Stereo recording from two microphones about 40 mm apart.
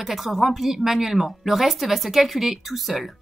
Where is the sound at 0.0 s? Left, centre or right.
Centre.